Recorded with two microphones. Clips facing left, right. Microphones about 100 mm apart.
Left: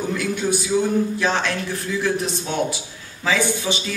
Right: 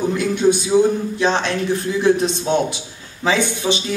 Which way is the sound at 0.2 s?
25° right (ahead or behind).